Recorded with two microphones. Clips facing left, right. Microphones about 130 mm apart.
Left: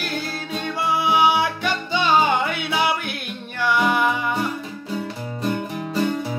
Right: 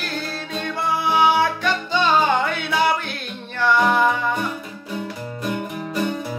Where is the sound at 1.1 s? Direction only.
5° left (ahead or behind).